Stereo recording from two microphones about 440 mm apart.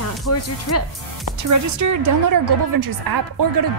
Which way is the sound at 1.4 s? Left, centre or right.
Right.